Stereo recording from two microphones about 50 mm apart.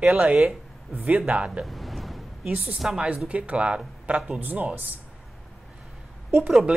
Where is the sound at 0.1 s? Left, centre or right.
Right.